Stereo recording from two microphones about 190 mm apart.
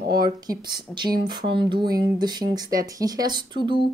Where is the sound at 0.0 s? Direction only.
55° right (ahead or behind).